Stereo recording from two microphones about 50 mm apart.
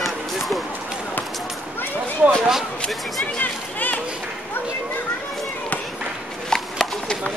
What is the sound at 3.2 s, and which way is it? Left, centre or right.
Speech, left.